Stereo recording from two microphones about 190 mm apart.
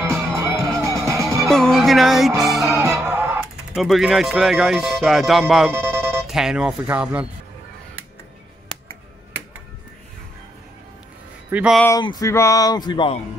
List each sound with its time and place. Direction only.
0.0 s music: 15° right (ahead or behind)
1.5 s speech: centre (ahead or behind)
2.4 s music: centre (ahead or behind)
2.8 s music: 15° right (ahead or behind)
3.8 s speech: centre (ahead or behind)
11.5 s speech: 5° right (ahead or behind)
12.0 s speech: 20° left (ahead or behind)